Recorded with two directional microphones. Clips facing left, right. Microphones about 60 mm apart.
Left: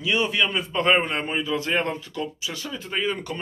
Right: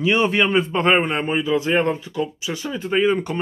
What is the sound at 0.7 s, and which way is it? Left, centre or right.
A man's voice, right.